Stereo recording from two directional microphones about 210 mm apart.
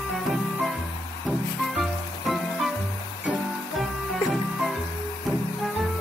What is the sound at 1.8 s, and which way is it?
Music, centre (ahead or behind).